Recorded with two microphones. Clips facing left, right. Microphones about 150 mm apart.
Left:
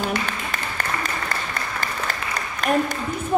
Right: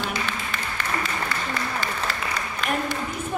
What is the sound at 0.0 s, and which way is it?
Applause, 45° left (ahead or behind).